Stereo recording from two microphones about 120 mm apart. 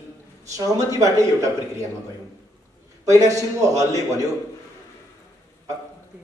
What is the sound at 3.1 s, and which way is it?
A man's voice, 25° right (ahead or behind).